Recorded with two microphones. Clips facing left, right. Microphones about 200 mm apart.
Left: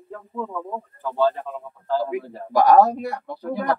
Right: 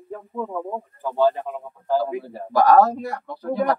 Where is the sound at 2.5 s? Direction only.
15° left (ahead or behind).